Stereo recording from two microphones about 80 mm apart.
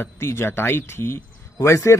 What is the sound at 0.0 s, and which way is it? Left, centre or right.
Speech, left.